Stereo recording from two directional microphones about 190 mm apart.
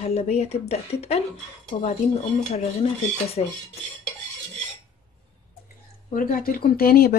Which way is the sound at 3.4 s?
35° left (ahead or behind).